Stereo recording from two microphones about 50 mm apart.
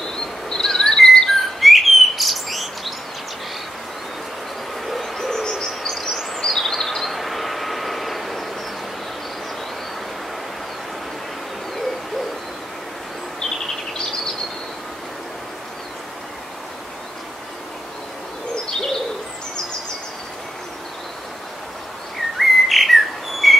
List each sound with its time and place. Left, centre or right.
0.1 s whistling: centre
4.8 s bird: centre
5.9 s chirp: centre
18.5 s hoot: centre
22.4 s bird: centre